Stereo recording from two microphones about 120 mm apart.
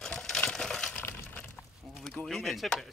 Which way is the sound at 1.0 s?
15° left (ahead or behind).